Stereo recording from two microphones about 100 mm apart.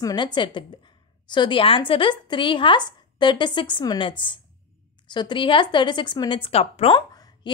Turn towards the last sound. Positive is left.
turn(degrees=50)  # may be behind; listen again after turning